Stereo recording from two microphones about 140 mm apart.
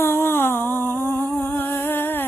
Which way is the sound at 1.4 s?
15° left (ahead or behind).